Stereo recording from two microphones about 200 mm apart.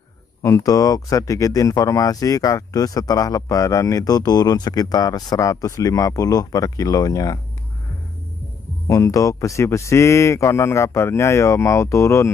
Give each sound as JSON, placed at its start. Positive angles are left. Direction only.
{"t": 0.4, "sound": "speech", "side_deg": 15}
{"t": 8.8, "sound": "speech", "side_deg": 15}